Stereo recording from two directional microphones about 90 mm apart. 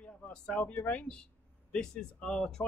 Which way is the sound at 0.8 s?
10° left (ahead or behind).